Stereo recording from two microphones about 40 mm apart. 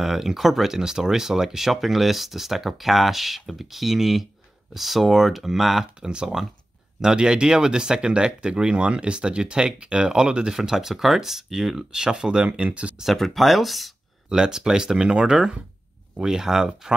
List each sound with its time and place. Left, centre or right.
0.0 s speech: centre
6.0 s speech: centre
11.9 s speech: centre
12.4 s speech: right
13.0 s speech: centre
14.3 s speech: centre